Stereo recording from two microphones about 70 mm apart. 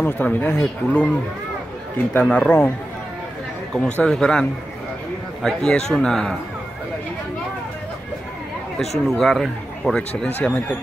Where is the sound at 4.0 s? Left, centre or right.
Centre.